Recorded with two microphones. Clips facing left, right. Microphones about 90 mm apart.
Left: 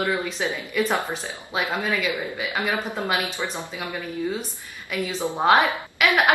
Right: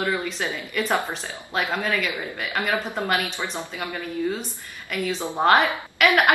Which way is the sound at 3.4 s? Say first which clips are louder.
Even; 20° left (ahead or behind).